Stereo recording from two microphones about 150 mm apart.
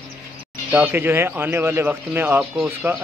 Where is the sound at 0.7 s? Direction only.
10° right (ahead or behind).